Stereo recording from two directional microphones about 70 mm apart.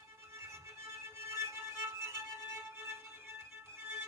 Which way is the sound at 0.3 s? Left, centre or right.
Right.